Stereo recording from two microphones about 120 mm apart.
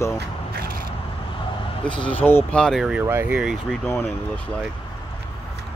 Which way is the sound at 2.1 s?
15° left (ahead or behind).